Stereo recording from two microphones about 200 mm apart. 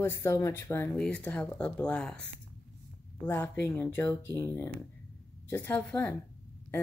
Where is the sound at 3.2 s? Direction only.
10° left (ahead or behind).